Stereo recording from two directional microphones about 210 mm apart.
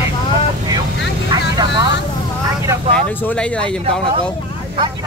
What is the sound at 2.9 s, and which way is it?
Speech, 10° left (ahead or behind).